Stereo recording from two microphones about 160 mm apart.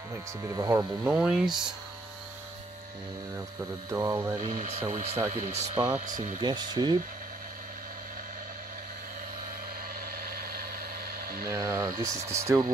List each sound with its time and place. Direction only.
0.4 s speech: 20° right (ahead or behind)
1.1 s speech: 5° right (ahead or behind)
3.9 s speech: 15° right (ahead or behind)
4.4 s speech: 45° right (ahead or behind)
6.4 s speech: 25° right (ahead or behind)
10.2 s vehicle: 70° right (ahead or behind)
11.4 s speech: 20° right (ahead or behind)